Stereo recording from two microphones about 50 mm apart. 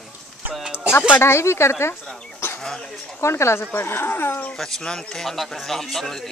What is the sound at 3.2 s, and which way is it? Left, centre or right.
Speech, left.